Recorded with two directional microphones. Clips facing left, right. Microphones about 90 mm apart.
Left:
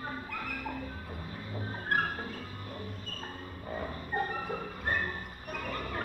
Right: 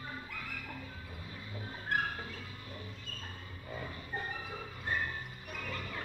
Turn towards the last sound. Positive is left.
turn(degrees=50)  # may be behind; listen again after turning